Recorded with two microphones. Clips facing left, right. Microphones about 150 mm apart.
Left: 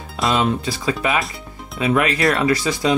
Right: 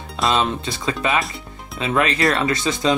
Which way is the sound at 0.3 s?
25° right (ahead or behind).